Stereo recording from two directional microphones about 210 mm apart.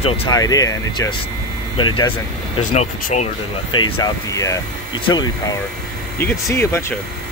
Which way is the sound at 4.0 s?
15° left (ahead or behind).